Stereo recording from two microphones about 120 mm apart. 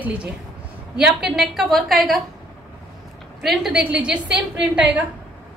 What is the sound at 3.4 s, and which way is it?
A woman's voice, centre (ahead or behind).